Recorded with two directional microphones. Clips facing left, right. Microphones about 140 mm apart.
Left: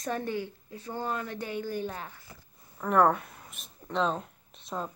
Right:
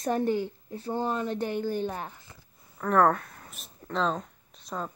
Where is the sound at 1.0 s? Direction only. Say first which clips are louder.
Right 4 dB; 20° right (ahead or behind).